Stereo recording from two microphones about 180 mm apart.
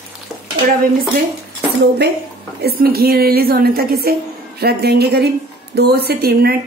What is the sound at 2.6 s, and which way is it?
A woman's voice, 60° right (ahead or behind).